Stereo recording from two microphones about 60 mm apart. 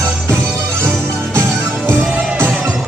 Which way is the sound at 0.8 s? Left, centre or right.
Right.